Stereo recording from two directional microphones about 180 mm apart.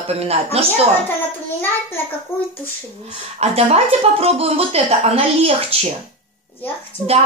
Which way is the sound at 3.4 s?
35° right (ahead or behind).